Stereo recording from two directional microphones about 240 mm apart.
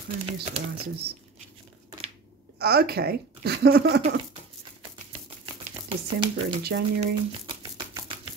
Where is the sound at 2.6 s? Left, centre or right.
Right.